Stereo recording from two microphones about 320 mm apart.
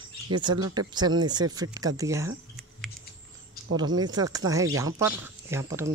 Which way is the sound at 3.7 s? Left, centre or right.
Centre.